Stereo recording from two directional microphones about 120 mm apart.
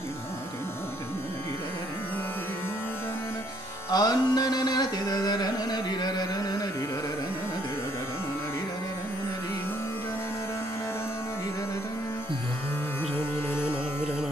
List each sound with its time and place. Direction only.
3.9 s carnatic music: 35° left (ahead or behind)